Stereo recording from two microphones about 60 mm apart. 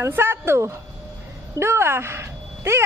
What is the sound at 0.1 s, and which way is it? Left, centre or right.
Speech, right.